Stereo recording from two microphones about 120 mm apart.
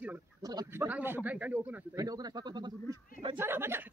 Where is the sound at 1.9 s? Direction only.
30° right (ahead or behind).